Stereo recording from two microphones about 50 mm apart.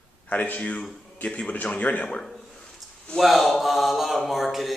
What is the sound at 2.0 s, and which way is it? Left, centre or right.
Speech, centre.